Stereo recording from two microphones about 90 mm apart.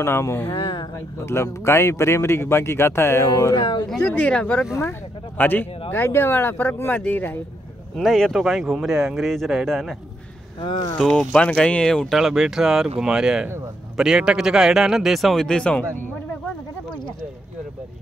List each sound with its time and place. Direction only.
0.0 s a man's voice: 30° left (ahead or behind)
0.5 s speech: 65° left (ahead or behind)
0.9 s a man's voice: 30° left (ahead or behind)
3.5 s speech: 55° left (ahead or behind)
4.0 s a man's voice: 15° left (ahead or behind)
7.9 s speech: centre (ahead or behind)
10.6 s speech: 60° left (ahead or behind)
11.0 s speech: 10° left (ahead or behind)
12.2 s speech: 5° right (ahead or behind); by 16.1 s 10° left (ahead or behind)